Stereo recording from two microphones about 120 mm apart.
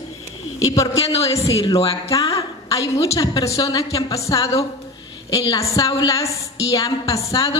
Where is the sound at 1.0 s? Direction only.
55° left (ahead or behind).